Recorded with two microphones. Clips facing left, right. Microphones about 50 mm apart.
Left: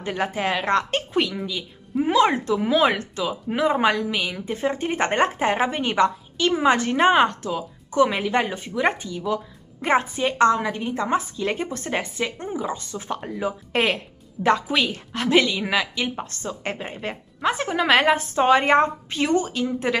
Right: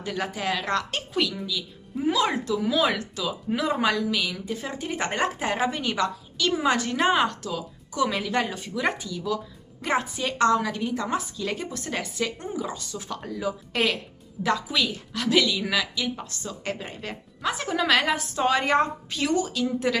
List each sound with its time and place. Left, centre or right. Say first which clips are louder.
0.0 s speech: left 4 dB; left